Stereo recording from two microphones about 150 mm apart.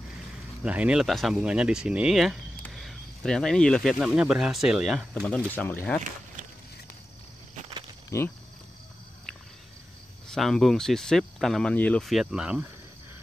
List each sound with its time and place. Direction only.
0.7 s speech: 5° right (ahead or behind)
5.5 s speech: 15° left (ahead or behind)
8.1 s speech: 20° left (ahead or behind)
10.2 s speech: 5° left (ahead or behind)